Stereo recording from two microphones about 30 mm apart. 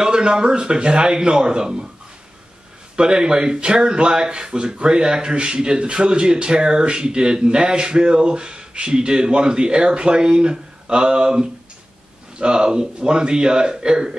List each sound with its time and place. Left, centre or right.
0.0 s speech: right
3.0 s speech: right